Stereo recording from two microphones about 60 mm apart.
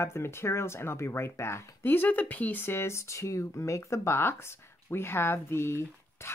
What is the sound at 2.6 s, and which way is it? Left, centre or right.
Speech, left.